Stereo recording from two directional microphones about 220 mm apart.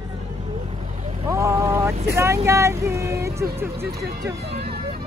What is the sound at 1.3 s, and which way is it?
Vehicle, 15° right (ahead or behind).